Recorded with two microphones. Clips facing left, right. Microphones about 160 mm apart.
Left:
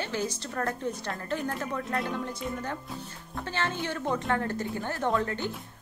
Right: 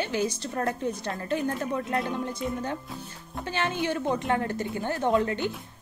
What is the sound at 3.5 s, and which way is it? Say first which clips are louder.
A woman's voice: right 4 dB; 15° right (ahead or behind).